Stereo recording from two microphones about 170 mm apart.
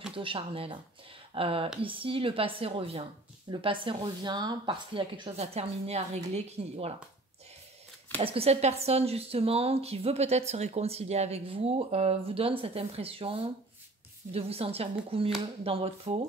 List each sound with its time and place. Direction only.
0.1 s speech: 30° right (ahead or behind)
8.2 s speech: 35° right (ahead or behind)